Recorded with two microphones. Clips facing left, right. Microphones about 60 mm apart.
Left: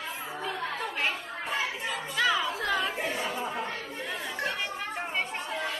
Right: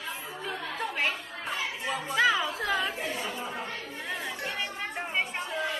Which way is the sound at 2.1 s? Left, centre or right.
Centre.